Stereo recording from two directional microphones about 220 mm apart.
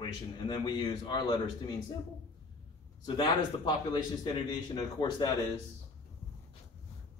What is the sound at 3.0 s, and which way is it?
Speech, 20° left (ahead or behind).